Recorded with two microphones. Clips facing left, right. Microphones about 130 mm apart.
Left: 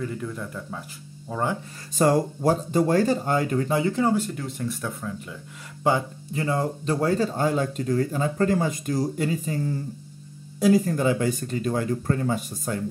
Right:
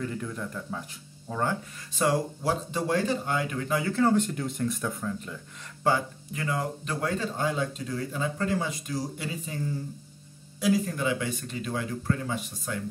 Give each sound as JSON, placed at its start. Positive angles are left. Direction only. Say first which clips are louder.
{"t": 0.0, "sound": "speech", "louder": "left 2 dB", "side_deg": 0}
{"t": 1.3, "sound": "speech", "louder": "left 2 dB", "side_deg": 15}
{"t": 2.0, "sound": "speech", "louder": "left 5 dB", "side_deg": 45}
{"t": 3.9, "sound": "speech", "louder": "left 1 dB", "side_deg": 15}
{"t": 4.2, "sound": "speech", "louder": "right 1 dB", "side_deg": 0}
{"t": 5.9, "sound": "speech", "louder": "left 3 dB", "side_deg": 15}
{"t": 6.3, "sound": "speech", "louder": "left 5 dB", "side_deg": 30}
{"t": 10.6, "sound": "speech", "louder": "left 6 dB", "side_deg": 45}